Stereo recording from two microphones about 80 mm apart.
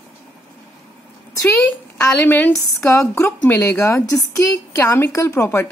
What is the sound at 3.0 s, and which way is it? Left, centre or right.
Speech, left.